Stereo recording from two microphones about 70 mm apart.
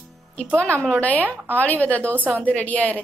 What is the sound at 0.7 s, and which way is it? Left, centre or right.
A woman's voice, centre.